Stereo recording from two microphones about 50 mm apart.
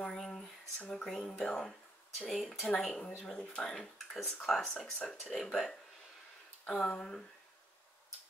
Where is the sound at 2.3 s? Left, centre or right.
Centre.